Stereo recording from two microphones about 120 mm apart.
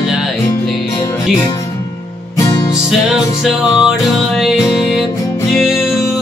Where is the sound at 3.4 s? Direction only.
5° right (ahead or behind).